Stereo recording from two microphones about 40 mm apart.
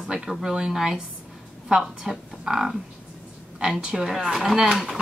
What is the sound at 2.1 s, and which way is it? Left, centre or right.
Speech, centre.